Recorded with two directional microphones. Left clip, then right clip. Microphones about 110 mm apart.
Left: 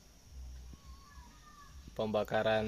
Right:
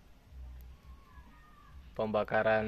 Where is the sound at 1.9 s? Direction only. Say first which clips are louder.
Right 2 dB; 20° left (ahead or behind).